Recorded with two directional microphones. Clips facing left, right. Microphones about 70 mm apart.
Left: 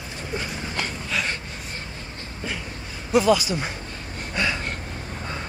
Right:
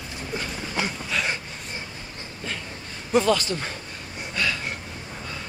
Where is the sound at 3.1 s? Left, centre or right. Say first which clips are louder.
Left 2 dB; centre.